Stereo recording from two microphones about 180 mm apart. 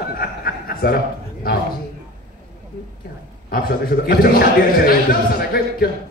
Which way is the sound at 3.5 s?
55° left (ahead or behind).